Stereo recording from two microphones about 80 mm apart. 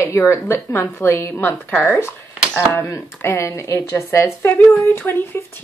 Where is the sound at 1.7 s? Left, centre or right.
Left.